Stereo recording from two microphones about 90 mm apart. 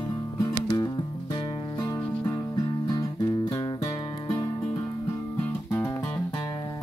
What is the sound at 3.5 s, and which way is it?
Music, 55° left (ahead or behind).